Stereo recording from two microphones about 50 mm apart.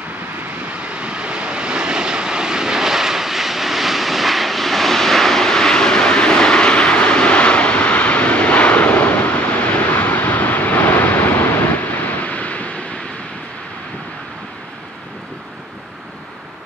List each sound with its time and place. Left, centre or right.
0.7 s vehicle: right; by 11.5 s left
12.3 s waves: left